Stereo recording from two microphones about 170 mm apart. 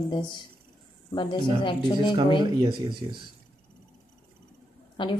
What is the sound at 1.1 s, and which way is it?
Speech, 30° left (ahead or behind).